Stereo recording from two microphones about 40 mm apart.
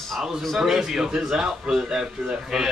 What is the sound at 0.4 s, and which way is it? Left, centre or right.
Speech, centre.